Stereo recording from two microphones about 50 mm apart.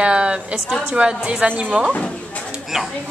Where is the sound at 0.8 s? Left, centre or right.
Right.